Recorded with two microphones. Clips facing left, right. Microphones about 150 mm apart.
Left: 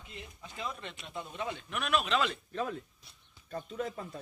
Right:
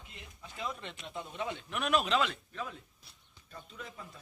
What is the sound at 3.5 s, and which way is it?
Speech, 50° left (ahead or behind).